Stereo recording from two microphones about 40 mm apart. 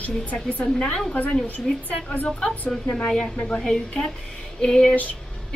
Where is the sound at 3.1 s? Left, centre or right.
Centre.